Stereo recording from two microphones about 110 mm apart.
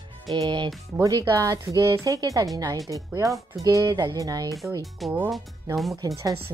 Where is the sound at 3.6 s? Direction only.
30° right (ahead or behind).